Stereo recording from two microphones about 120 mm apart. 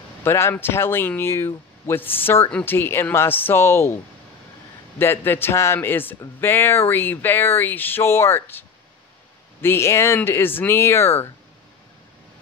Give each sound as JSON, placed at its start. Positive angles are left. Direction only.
{"t": 0.2, "sound": "a man's voice", "side_deg": 20}
{"t": 4.9, "sound": "a man's voice", "side_deg": 20}
{"t": 9.6, "sound": "a man's voice", "side_deg": 20}